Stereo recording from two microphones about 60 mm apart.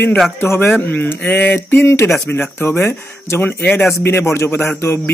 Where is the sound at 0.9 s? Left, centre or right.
Left.